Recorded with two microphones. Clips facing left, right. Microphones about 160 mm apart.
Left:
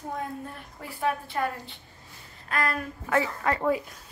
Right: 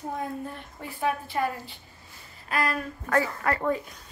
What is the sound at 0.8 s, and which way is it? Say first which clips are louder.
A woman's voice: even; centre (ahead or behind).